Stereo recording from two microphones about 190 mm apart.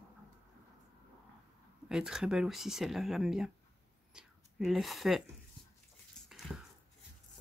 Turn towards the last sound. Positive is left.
turn(degrees=0)  # may be behind; listen again after turning